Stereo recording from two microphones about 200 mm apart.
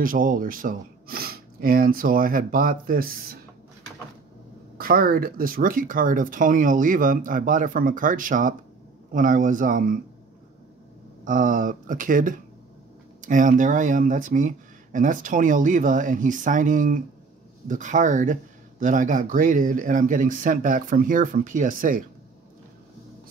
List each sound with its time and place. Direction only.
0.0 s speech: 45° right (ahead or behind)
4.7 s speech: 45° right (ahead or behind)
11.2 s speech: 40° right (ahead or behind)